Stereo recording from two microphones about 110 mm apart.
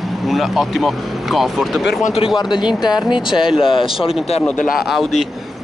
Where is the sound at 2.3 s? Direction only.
45° left (ahead or behind).